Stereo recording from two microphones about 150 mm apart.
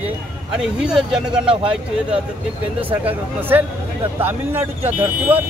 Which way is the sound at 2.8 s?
10° right (ahead or behind).